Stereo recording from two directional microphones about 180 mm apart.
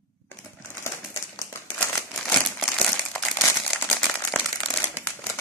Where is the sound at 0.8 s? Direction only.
15° left (ahead or behind).